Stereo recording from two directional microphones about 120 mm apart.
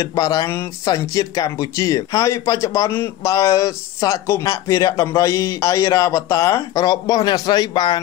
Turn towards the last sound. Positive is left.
turn(degrees=35)  # may be behind; listen again after turning